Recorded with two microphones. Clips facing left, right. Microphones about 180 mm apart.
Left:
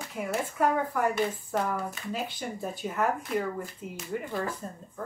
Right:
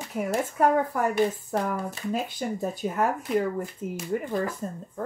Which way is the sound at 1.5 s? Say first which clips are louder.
Right 2 dB; 40° right (ahead or behind).